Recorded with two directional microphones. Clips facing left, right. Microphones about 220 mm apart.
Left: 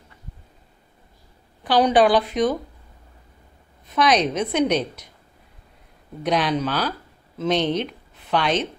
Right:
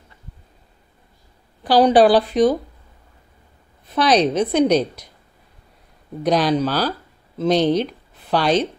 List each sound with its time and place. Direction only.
1.6 s a woman's voice: 35° right (ahead or behind)
3.9 s a woman's voice: 35° right (ahead or behind)
6.2 s a woman's voice: 35° right (ahead or behind)